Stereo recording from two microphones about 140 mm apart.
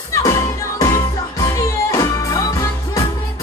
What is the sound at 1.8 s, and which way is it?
Music, 25° left (ahead or behind).